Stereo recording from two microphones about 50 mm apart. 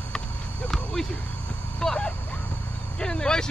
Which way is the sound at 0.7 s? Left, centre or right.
Centre.